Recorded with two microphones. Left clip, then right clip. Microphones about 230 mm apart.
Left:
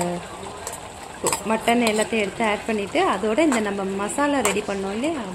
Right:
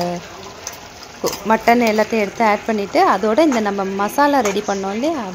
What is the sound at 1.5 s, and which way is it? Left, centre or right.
Speech, centre.